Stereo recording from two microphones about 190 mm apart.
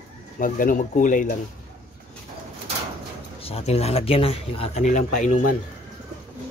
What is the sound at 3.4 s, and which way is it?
Speech, 30° left (ahead or behind).